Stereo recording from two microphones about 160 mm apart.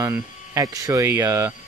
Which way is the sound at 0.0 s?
15° right (ahead or behind).